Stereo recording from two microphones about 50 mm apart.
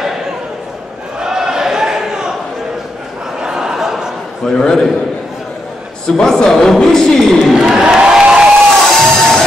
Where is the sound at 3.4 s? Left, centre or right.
Centre.